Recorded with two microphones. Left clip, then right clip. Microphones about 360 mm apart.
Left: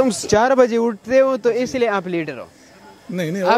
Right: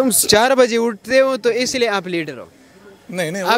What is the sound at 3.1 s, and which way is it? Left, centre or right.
Speech, right.